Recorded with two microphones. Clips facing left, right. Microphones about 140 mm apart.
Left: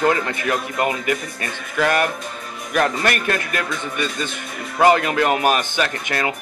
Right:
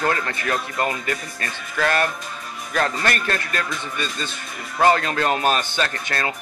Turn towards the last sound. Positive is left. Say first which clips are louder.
# left 3 dB
turn(degrees=15)  # may be behind; listen again after turning